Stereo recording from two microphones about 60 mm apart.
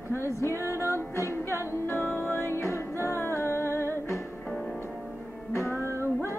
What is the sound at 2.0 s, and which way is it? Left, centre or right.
Music, left.